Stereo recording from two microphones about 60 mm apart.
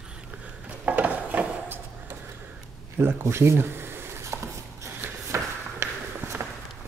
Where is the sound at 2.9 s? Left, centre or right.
Right.